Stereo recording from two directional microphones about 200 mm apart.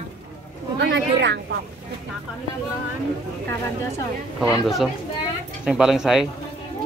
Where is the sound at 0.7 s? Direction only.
65° right (ahead or behind).